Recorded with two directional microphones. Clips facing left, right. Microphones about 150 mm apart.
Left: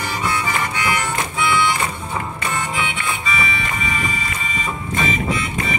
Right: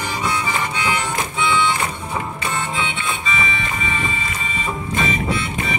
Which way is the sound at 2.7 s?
25° right (ahead or behind).